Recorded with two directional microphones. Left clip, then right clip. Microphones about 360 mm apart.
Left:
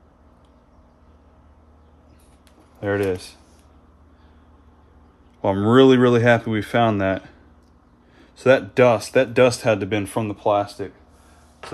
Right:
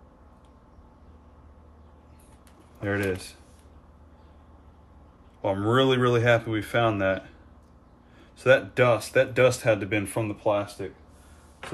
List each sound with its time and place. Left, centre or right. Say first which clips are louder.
2.8 s speech: left 6 dB; centre
5.4 s speech: left 8 dB; left